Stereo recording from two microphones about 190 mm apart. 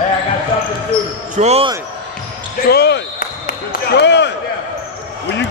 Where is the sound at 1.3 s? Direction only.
35° right (ahead or behind).